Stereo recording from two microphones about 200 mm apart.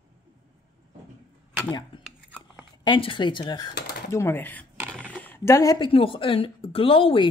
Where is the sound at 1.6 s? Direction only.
20° left (ahead or behind).